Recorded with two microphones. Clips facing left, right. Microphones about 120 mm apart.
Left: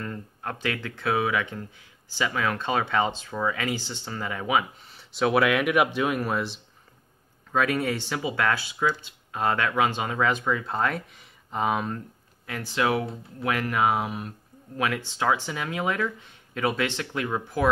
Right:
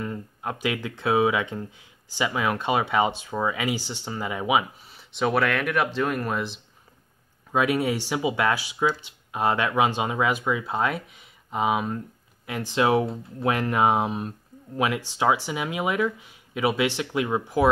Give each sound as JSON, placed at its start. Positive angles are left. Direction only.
{"t": 0.0, "sound": "speech", "side_deg": -15}
{"t": 4.9, "sound": "speech", "side_deg": 0}
{"t": 7.5, "sound": "speech", "side_deg": -15}
{"t": 12.4, "sound": "speech", "side_deg": -20}